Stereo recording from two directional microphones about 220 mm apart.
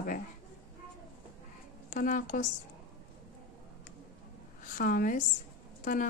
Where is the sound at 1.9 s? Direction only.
35° left (ahead or behind).